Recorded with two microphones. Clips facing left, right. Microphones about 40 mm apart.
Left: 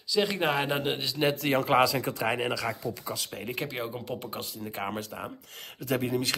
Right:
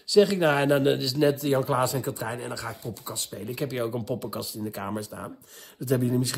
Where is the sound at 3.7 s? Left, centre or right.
Centre.